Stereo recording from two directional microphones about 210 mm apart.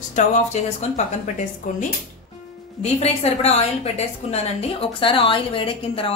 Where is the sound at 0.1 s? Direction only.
35° left (ahead or behind).